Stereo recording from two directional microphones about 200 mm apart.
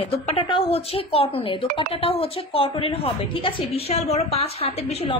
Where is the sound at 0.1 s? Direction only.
25° left (ahead or behind).